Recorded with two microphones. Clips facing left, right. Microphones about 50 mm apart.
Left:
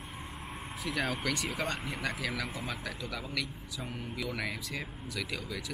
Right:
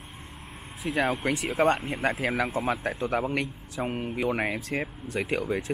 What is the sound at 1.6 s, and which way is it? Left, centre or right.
Speech, right.